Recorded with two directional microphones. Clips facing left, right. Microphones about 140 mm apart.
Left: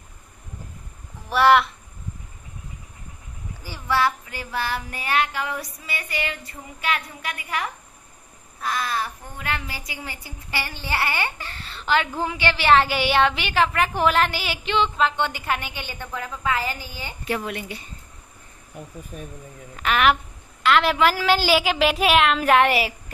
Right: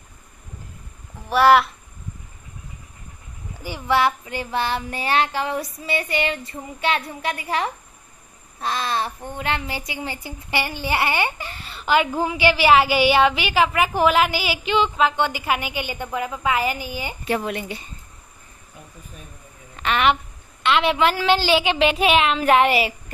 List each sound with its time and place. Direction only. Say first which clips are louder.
1.3 s a woman's voice: right 2 dB; centre (ahead or behind)
3.6 s child singing: right 3 dB; 20° right (ahead or behind)
8.5 s speech: right 2 dB; 25° right (ahead or behind)
17.3 s child singing: right 3 dB; 30° right (ahead or behind)
19.8 s a sound: even; centre (ahead or behind)
20.6 s a woman's voice: even; centre (ahead or behind)